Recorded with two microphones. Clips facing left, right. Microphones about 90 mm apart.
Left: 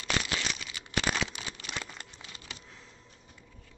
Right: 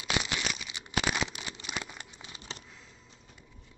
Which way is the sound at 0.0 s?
20° right (ahead or behind).